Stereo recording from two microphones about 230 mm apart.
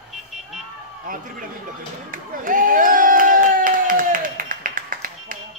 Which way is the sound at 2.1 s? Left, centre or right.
Right.